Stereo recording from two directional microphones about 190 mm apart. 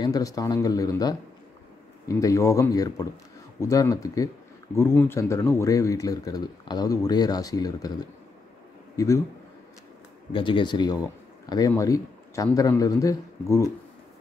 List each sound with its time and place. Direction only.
0.0 s a man's voice: 20° left (ahead or behind)
10.3 s a man's voice: 25° left (ahead or behind)